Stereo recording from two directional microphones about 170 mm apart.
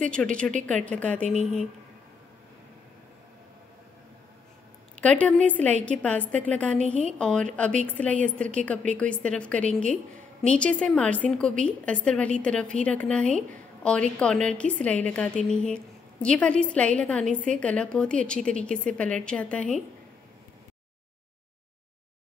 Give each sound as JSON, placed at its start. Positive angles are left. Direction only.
{"t": 0.0, "sound": "a woman's voice", "side_deg": 5}
{"t": 1.3, "sound": "speech", "side_deg": -40}
{"t": 5.0, "sound": "a woman's voice", "side_deg": 5}